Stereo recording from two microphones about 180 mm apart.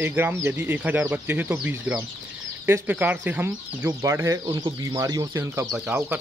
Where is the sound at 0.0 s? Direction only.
10° right (ahead or behind).